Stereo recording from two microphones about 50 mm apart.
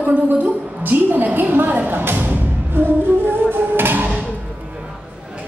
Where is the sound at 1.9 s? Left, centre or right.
Right.